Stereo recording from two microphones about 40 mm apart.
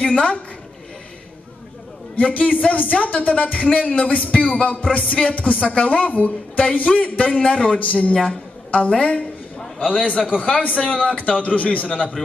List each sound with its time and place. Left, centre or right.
0.0 s a man's voice: left
2.1 s a woman's voice: left
5.2 s speech: centre
5.7 s a woman's voice: left
8.1 s a woman's voice: left